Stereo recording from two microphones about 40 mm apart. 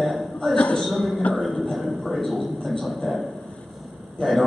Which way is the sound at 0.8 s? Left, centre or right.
Centre.